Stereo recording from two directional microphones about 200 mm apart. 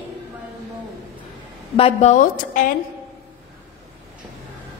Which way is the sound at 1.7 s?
30° left (ahead or behind).